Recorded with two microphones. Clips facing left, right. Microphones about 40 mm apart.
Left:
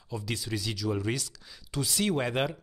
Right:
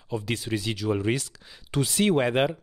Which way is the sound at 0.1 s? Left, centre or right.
Right.